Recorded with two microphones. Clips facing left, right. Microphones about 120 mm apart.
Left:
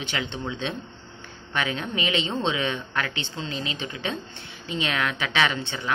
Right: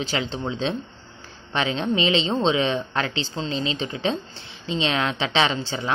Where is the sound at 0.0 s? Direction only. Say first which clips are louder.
Right 4 dB; 35° right (ahead or behind).